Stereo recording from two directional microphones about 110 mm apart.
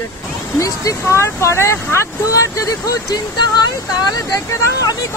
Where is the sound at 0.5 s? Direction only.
30° left (ahead or behind).